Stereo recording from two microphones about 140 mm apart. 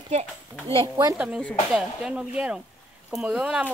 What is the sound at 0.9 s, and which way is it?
Speech, 10° right (ahead or behind).